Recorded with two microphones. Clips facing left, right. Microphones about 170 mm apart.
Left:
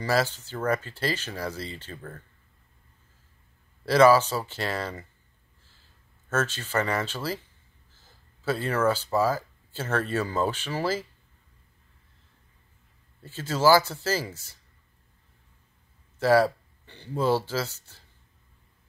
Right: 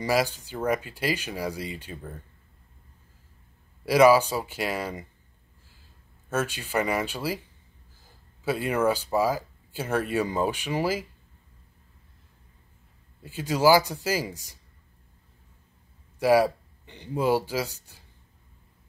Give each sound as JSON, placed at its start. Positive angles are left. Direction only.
{"t": 0.0, "sound": "speech", "side_deg": -10}
{"t": 3.8, "sound": "speech", "side_deg": -10}
{"t": 13.2, "sound": "speech", "side_deg": -10}
{"t": 16.2, "sound": "speech", "side_deg": -10}